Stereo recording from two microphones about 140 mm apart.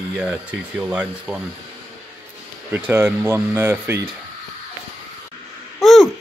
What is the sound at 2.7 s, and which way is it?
Speech, 15° right (ahead or behind).